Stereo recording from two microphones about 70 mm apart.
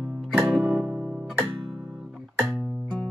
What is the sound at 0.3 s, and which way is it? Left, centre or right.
Music, centre.